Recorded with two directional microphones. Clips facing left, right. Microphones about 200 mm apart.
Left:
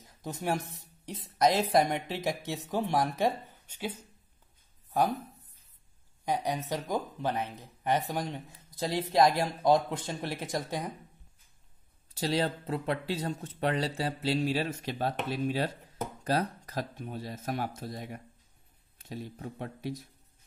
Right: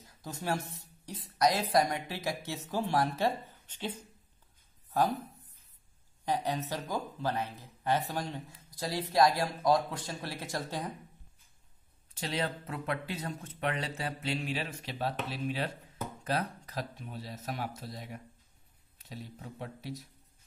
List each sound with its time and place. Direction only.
0.2 s speech: 20° left (ahead or behind)
6.2 s speech: 10° left (ahead or behind)
12.1 s speech: 35° left (ahead or behind)
19.6 s speech: 50° left (ahead or behind)